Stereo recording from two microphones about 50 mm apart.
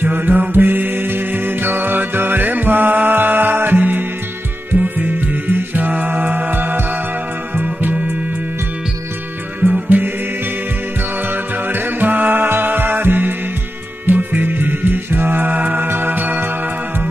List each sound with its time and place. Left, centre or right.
0.0 s music: right
7.6 s music: right
9.7 s music: right
11.7 s music: right